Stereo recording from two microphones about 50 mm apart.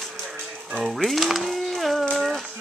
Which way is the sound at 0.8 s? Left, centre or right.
Centre.